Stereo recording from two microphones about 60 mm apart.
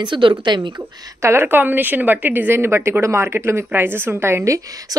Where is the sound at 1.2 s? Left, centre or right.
Right.